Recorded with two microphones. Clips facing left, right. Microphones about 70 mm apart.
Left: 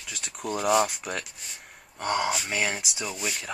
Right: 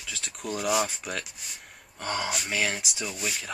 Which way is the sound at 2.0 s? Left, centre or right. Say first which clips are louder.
Left 4 dB; left.